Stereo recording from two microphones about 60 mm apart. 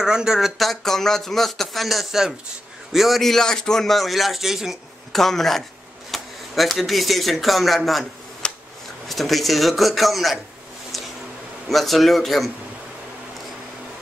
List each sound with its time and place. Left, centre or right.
0.0 s speech: centre
5.1 s speech: centre
8.4 s a sound: centre
9.0 s speech: centre
11.7 s speech: centre